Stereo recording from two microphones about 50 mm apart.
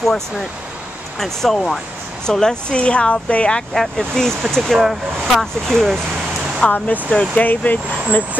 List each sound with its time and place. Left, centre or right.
0.0 s speech: centre
3.7 s speech: centre
4.7 s speech: centre
5.3 s speech: centre
6.7 s speech: left